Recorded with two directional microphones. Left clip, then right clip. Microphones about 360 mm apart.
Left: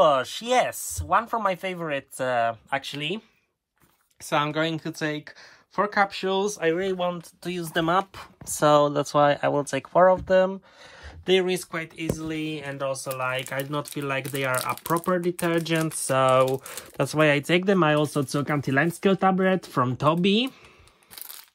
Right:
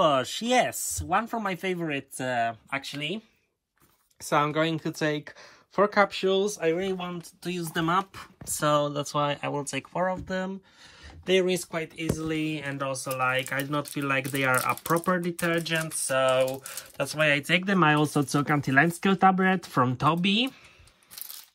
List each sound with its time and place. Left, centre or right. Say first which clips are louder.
0.0 s a sound: left 3 dB; centre
0.3 s speech: left 1 dB; left
0.7 s speech: left 3 dB; centre
1.8 s speech: left 3 dB; left
2.7 s speech: left 3 dB; centre
4.2 s speech: even; centre
9.2 s speech: left 9 dB; left
11.2 s speech: left 2 dB; centre